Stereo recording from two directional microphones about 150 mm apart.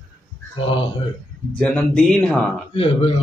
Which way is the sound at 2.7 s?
40° left (ahead or behind).